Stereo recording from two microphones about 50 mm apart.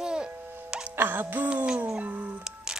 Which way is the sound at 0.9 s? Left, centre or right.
Right.